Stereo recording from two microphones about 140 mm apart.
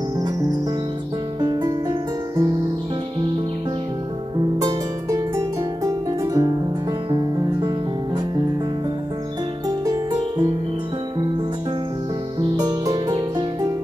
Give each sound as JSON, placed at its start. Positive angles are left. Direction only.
{"t": 1.4, "sound": "music", "side_deg": -30}
{"t": 6.2, "sound": "music", "side_deg": -25}
{"t": 12.4, "sound": "music", "side_deg": -30}